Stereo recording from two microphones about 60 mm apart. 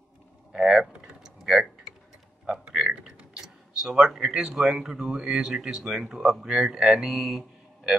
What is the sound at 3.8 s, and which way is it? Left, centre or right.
Speech, centre.